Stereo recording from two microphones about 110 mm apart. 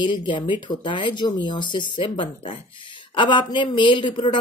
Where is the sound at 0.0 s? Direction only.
45° left (ahead or behind).